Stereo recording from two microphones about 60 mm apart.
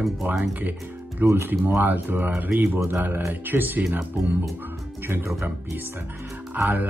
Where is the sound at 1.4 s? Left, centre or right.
Right.